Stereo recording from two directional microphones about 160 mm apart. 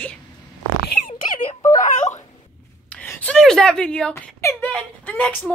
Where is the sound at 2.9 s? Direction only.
10° left (ahead or behind).